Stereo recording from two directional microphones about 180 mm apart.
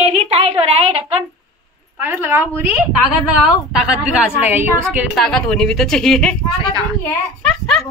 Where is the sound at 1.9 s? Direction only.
10° right (ahead or behind).